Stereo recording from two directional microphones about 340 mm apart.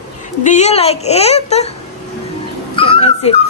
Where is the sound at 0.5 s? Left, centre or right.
Centre.